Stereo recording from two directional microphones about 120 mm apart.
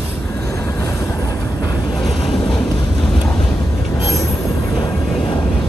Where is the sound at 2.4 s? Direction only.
10° left (ahead or behind).